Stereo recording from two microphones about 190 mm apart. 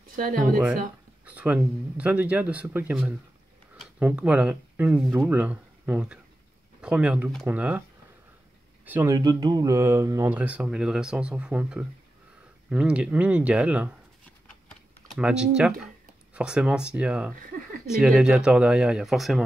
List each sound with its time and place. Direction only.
0.1 s speech: 45° right (ahead or behind)
1.2 s speech: 5° right (ahead or behind)
8.8 s speech: 15° right (ahead or behind)
14.7 s typing: centre (ahead or behind)
16.3 s speech: 5° right (ahead or behind)